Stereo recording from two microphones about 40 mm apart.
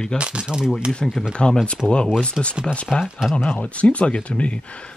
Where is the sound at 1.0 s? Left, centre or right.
Centre.